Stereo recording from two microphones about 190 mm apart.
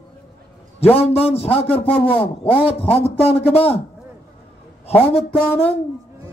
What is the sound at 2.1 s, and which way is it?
Speech, 10° left (ahead or behind).